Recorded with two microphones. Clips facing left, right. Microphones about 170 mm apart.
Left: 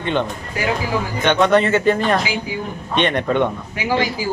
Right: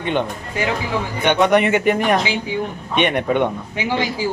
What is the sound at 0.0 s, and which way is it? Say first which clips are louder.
Speech: even; 15° right (ahead or behind).